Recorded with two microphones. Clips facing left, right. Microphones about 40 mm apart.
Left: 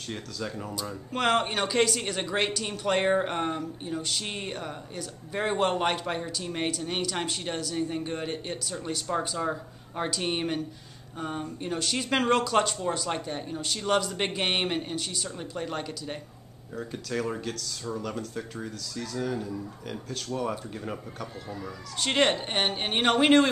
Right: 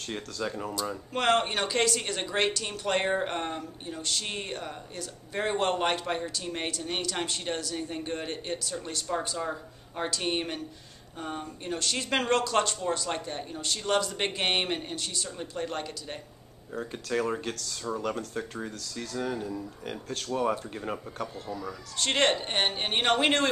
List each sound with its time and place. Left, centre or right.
0.0 s speech: centre
16.7 s speech: centre
21.6 s speech: centre